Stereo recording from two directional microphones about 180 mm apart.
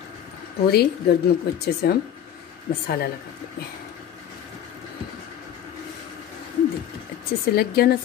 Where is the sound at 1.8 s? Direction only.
60° left (ahead or behind).